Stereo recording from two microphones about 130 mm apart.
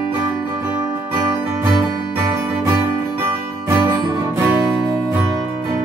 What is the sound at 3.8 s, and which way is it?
Music, 30° right (ahead or behind).